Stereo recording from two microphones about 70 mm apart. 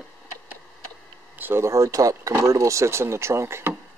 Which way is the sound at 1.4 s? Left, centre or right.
Right.